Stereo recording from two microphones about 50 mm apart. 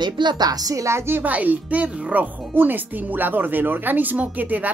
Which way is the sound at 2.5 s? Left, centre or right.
Right.